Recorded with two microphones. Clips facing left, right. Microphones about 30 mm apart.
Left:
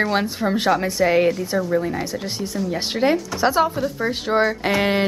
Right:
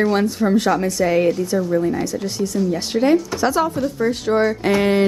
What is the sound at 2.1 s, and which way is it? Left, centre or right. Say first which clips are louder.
A woman's voice: right 4 dB; left.